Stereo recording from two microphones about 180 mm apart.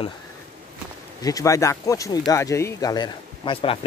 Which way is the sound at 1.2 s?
20° left (ahead or behind).